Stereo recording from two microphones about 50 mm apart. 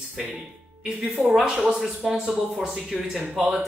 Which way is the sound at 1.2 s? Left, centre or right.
Centre.